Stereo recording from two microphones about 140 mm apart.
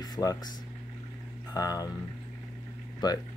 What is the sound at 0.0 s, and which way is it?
Speech, 25° left (ahead or behind).